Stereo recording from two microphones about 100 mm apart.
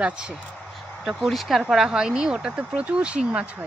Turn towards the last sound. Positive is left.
turn(degrees=-10)  # may be behind; listen again after turning